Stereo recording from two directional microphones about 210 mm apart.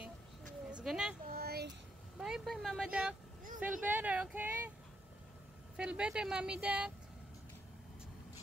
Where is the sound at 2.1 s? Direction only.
Centre (ahead or behind).